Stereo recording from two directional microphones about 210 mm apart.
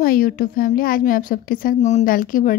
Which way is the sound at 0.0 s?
40° left (ahead or behind).